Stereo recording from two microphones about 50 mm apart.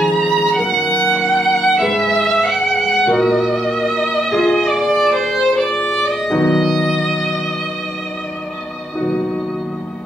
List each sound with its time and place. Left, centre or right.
0.0 s music: centre
1.0 s violin: centre
2.6 s music: centre
4.6 s violin: centre
6.0 s music: centre